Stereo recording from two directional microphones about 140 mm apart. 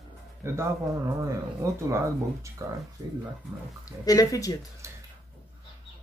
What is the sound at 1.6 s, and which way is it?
Speech, 20° right (ahead or behind).